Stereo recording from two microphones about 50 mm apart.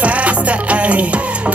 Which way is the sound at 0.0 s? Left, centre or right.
Right.